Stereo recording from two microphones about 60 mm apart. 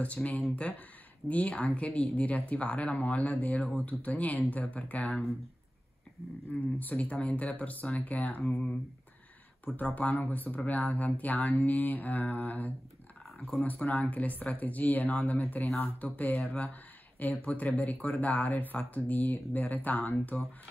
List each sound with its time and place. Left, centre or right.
0.0 s speech: left
6.5 s speech: left
8.4 s speech: centre
9.8 s speech: left